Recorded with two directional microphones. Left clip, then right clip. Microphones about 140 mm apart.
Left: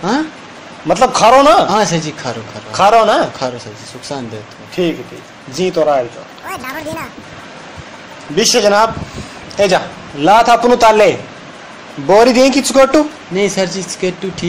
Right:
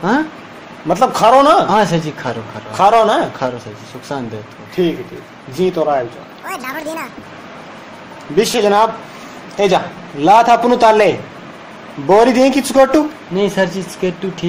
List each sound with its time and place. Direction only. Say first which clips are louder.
0.8 s a man's voice: left 2 dB; 25° left (ahead or behind)
1.7 s speech: even; 5° right (ahead or behind)
2.7 s a man's voice: left 1 dB; 30° left (ahead or behind)
3.3 s speech: even; 10° right (ahead or behind)
4.8 s a man's voice: even; 25° left (ahead or behind)
6.4 s speech: even; centre (ahead or behind)
8.4 s a man's voice: left 2 dB; 25° left (ahead or behind)
13.4 s speech: left 1 dB; 5° right (ahead or behind)